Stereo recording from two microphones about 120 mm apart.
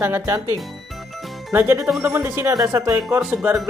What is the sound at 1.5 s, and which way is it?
Speech, 20° right (ahead or behind).